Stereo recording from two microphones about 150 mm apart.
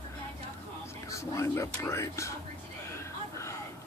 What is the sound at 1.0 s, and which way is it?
Speech, 20° left (ahead or behind).